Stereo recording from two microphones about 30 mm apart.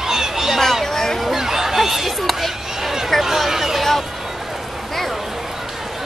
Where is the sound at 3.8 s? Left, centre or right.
Centre.